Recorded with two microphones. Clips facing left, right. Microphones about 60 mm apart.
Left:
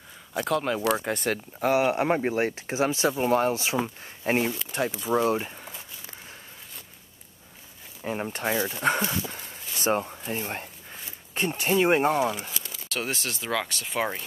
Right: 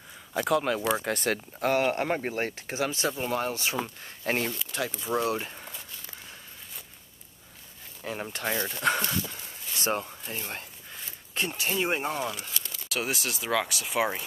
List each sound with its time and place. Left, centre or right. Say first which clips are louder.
0.3 s speech: even; centre; by 3.7 s left
3.7 s speech: left 4 dB; centre
5.7 s walk: left 1 dB; centre
8.0 s speech: left 4 dB; centre
10.3 s speech: left 5 dB; left
12.2 s speech: left 6 dB; centre